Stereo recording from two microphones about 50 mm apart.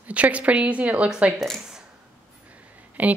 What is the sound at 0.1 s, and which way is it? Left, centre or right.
A woman's voice, right.